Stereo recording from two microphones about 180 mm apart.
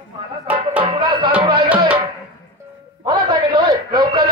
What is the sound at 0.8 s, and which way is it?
Music, 25° right (ahead or behind).